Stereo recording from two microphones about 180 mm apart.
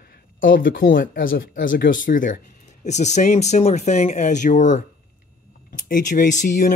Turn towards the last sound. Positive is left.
turn(degrees=45)  # may be behind; listen again after turning